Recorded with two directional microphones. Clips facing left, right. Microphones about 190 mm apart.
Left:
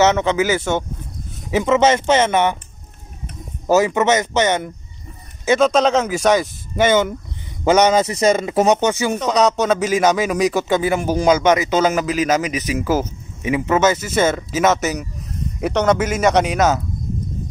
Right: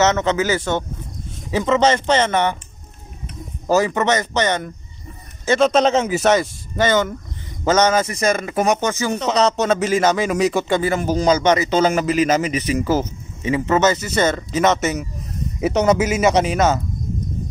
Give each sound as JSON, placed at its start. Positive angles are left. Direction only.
{"t": 0.0, "sound": "speech", "side_deg": 10}
{"t": 3.7, "sound": "speech", "side_deg": 10}
{"t": 5.7, "sound": "speech", "side_deg": 0}
{"t": 6.8, "sound": "speech", "side_deg": 10}
{"t": 9.1, "sound": "speech", "side_deg": 0}